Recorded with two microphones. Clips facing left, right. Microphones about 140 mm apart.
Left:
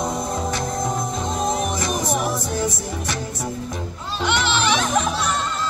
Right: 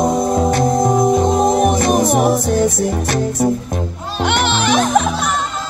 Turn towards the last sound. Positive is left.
turn(degrees=-50)  # may be behind; listen again after turning